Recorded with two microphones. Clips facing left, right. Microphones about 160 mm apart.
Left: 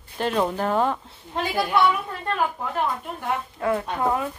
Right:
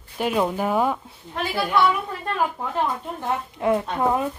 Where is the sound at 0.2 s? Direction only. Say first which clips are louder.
Right 1 dB; 5° right (ahead or behind).